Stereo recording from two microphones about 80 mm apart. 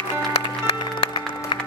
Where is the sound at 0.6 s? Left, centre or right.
Left.